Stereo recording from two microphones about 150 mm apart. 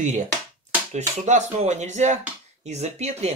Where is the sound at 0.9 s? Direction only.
50° right (ahead or behind).